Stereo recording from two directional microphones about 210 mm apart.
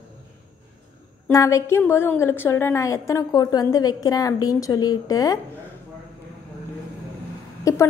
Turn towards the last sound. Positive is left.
turn(degrees=15)  # may be behind; listen again after turning